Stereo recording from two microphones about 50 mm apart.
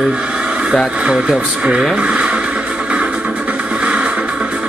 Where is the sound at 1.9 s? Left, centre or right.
Right.